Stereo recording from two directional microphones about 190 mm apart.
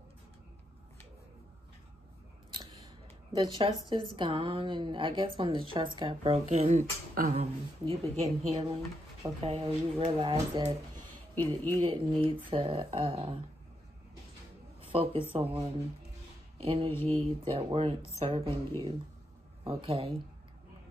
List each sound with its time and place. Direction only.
2.5 s scissors: 20° right (ahead or behind)
3.3 s a woman's voice: 25° right (ahead or behind); by 7.4 s 40° right (ahead or behind)
7.8 s a woman's voice: 30° right (ahead or behind)
11.3 s speech: 10° left (ahead or behind)
11.9 s a woman's voice: 30° right (ahead or behind)
14.8 s a woman's voice: 30° right (ahead or behind)
19.6 s a woman's voice: 30° right (ahead or behind)